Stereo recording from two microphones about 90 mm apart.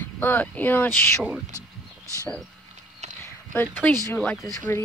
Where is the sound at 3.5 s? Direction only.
25° left (ahead or behind).